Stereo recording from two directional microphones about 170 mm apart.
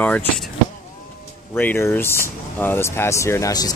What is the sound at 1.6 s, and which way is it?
Speech, 10° left (ahead or behind).